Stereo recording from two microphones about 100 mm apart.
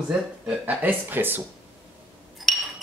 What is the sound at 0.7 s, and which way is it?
Speech, 20° right (ahead or behind).